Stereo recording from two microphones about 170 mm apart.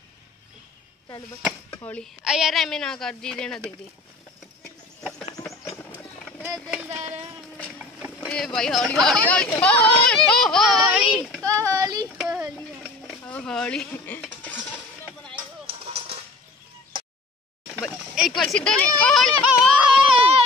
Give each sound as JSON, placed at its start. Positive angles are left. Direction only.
{"t": 1.8, "sound": "a woman's voice", "side_deg": 10}
{"t": 2.2, "sound": "speech", "side_deg": -5}
{"t": 6.4, "sound": "speech", "side_deg": -15}
{"t": 7.0, "sound": "speech", "side_deg": -40}
{"t": 8.3, "sound": "speech", "side_deg": 5}
{"t": 11.4, "sound": "speech", "side_deg": -20}
{"t": 12.2, "sound": "a sound", "side_deg": -5}
{"t": 13.2, "sound": "speech", "side_deg": 5}
{"t": 15.3, "sound": "music", "side_deg": -35}
{"t": 17.8, "sound": "a child's voice", "side_deg": 0}
{"t": 19.5, "sound": "a sound", "side_deg": -5}
{"t": 20.2, "sound": "a sound", "side_deg": -35}